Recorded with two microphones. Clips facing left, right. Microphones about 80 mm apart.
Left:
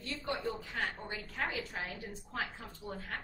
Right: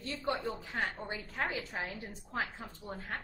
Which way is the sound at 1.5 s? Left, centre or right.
Right.